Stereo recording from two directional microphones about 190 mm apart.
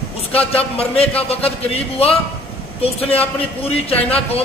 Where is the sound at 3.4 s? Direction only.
30° left (ahead or behind).